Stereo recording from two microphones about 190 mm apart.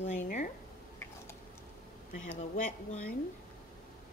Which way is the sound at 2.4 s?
45° left (ahead or behind).